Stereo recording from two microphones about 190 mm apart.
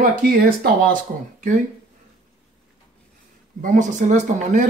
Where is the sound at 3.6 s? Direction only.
40° right (ahead or behind).